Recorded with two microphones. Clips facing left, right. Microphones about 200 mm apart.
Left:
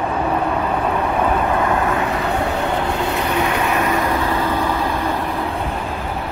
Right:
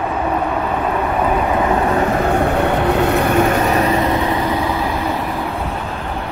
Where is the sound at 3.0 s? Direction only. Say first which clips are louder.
Right 5 dB; 50° right (ahead or behind).